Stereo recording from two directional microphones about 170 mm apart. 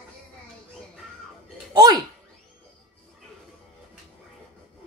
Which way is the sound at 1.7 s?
25° right (ahead or behind).